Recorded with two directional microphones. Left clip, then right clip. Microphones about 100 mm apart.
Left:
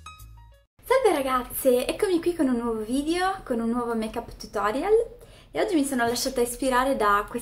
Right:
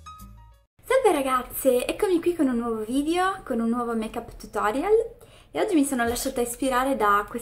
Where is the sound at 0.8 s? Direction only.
20° right (ahead or behind).